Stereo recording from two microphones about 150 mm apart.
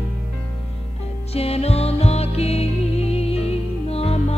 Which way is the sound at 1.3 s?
40° left (ahead or behind).